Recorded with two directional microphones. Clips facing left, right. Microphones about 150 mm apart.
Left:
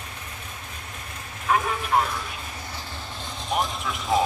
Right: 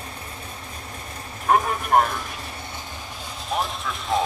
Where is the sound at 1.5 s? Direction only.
50° right (ahead or behind).